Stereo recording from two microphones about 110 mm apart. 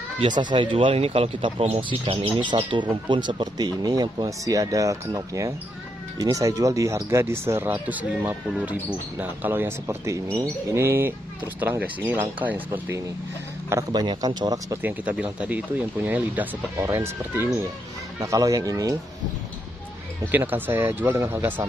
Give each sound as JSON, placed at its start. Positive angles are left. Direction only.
{"t": 0.2, "sound": "speech", "side_deg": -45}
{"t": 1.8, "sound": "speech", "side_deg": -50}
{"t": 13.7, "sound": "speech", "side_deg": -30}
{"t": 14.8, "sound": "speech", "side_deg": -15}
{"t": 20.2, "sound": "speech", "side_deg": -20}